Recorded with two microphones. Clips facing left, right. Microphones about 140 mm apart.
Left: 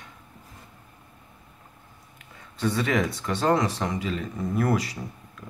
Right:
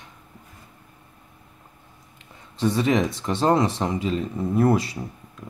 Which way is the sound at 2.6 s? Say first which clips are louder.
Right 4 dB; 25° right (ahead or behind).